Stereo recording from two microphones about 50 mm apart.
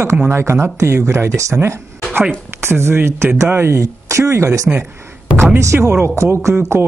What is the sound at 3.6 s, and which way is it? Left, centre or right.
Speech, right.